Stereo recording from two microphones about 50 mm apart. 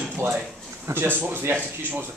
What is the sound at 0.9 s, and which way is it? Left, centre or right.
Speech, right.